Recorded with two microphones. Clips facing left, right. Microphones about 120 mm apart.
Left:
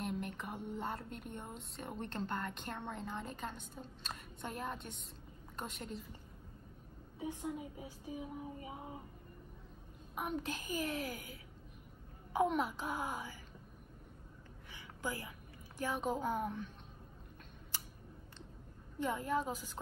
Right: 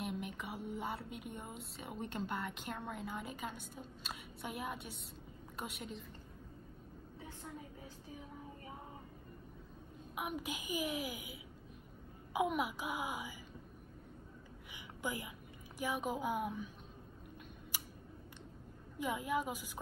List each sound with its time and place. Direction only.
0.0 s a woman's voice: 5° right (ahead or behind)
7.2 s a sound: 15° left (ahead or behind)
10.1 s a woman's voice: 10° right (ahead or behind)
14.7 s a sound: 15° right (ahead or behind)
15.8 s a woman's voice: 10° right (ahead or behind)
18.9 s a woman's voice: 10° right (ahead or behind)